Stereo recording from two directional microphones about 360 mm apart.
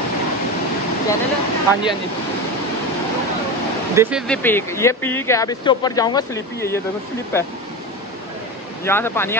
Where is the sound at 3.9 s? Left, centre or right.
Centre.